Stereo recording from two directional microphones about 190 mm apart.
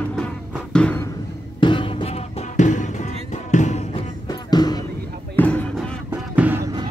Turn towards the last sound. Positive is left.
turn(degrees=-10)  # may be behind; listen again after turning